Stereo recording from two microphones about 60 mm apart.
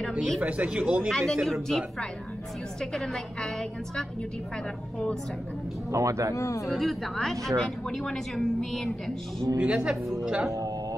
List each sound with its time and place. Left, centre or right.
0.4 s a man's voice: right
1.1 s a woman's voice: centre
5.9 s speech: right
6.3 s speech: left
6.7 s a woman's voice: centre
9.6 s speech: centre